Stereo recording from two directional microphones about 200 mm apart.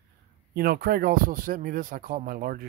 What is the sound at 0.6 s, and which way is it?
Speech, 50° right (ahead or behind).